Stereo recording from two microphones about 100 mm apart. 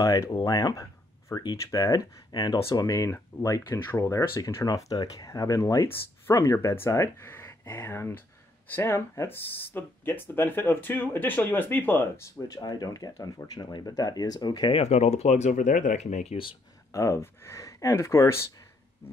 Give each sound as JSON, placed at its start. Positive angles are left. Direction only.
{"t": 0.0, "sound": "speech", "side_deg": 35}
{"t": 12.4, "sound": "speech", "side_deg": 40}
{"t": 14.8, "sound": "speech", "side_deg": 90}
{"t": 16.0, "sound": "speech", "side_deg": 75}
{"t": 16.9, "sound": "speech", "side_deg": 30}